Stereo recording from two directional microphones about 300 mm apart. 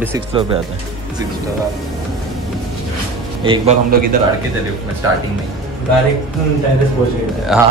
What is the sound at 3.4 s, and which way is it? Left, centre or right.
Speech, centre.